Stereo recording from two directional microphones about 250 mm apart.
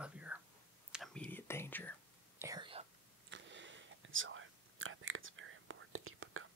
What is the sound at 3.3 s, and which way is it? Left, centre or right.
Whispering, right.